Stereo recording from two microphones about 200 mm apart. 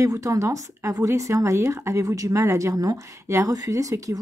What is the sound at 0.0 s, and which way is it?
Speech, 15° right (ahead or behind).